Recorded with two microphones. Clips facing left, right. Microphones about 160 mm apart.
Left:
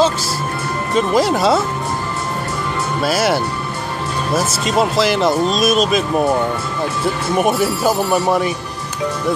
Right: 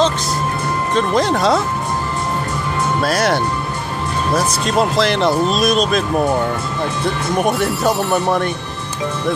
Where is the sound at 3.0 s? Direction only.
5° left (ahead or behind).